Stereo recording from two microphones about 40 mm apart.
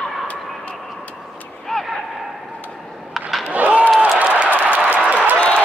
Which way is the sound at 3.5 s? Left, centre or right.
Right.